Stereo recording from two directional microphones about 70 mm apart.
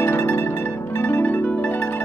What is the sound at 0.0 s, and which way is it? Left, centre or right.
Music, left.